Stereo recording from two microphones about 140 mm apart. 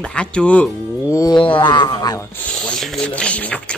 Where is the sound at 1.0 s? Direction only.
25° left (ahead or behind).